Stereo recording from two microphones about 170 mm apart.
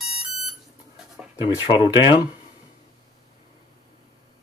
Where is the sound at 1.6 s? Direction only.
30° left (ahead or behind).